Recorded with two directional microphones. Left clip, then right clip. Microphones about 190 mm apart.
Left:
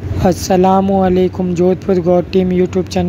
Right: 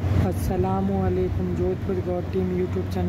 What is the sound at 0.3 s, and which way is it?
Speech, 45° left (ahead or behind).